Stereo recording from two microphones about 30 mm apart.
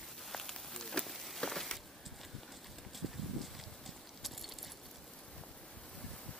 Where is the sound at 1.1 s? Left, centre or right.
Centre.